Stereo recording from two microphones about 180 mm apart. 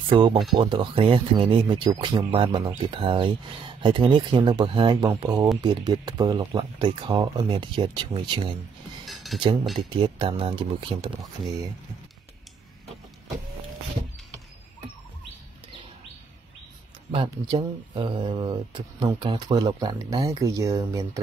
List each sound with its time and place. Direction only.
0.1 s speech: 25° right (ahead or behind)
9.0 s a sound: centre (ahead or behind)
9.4 s speech: 25° right (ahead or behind)
17.1 s speech: 25° right (ahead or behind)